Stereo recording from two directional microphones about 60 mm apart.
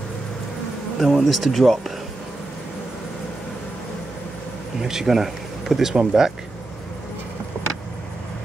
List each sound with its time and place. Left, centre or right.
0.9 s speech: centre
4.8 s speech: centre